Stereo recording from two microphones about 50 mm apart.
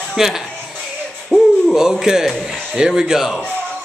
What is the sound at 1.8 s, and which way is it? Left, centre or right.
A man's voice, centre.